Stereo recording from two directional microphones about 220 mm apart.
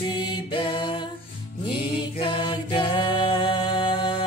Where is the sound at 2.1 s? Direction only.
20° left (ahead or behind).